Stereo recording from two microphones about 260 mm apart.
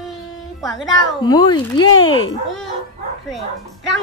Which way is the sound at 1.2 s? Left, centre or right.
Centre.